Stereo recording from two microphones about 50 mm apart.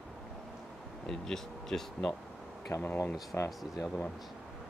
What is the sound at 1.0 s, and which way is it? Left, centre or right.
Speech, centre.